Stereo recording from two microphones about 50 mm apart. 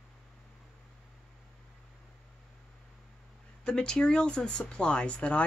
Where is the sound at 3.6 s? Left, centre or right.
Centre.